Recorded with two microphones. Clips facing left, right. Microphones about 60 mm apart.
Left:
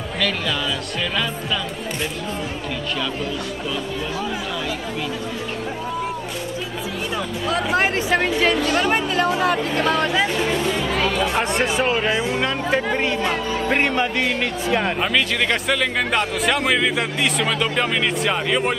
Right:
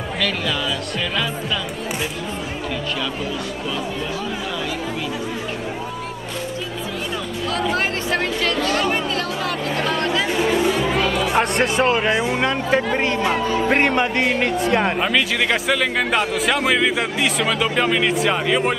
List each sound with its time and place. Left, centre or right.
7.4 s speech: centre
9.8 s speech: centre
10.3 s speech: centre